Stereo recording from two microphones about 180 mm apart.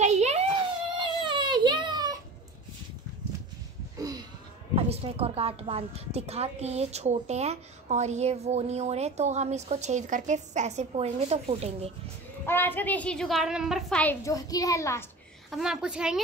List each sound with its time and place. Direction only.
0.0 s a sound: 40° right (ahead or behind)
0.9 s child singing: 25° right (ahead or behind)
4.0 s a sound: 20° right (ahead or behind)
4.7 s a woman's voice: 35° right (ahead or behind)
12.4 s a woman's voice: 10° left (ahead or behind)
14.2 s a child's voice: 20° left (ahead or behind)
15.5 s a woman's voice: 5° right (ahead or behind)